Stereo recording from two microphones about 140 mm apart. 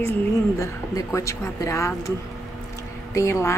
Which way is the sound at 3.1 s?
20° left (ahead or behind).